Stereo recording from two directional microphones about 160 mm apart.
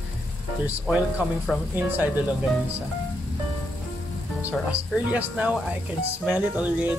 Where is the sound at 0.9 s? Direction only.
5° right (ahead or behind).